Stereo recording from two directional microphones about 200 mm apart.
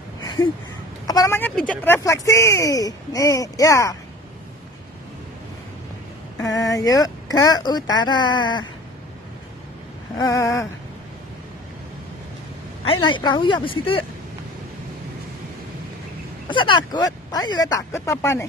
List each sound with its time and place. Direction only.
1.0 s speech: 15° left (ahead or behind)
6.4 s speech: 15° left (ahead or behind)
10.1 s speech: 15° left (ahead or behind)
12.8 s speech: 25° left (ahead or behind)
16.4 s speech: 25° left (ahead or behind)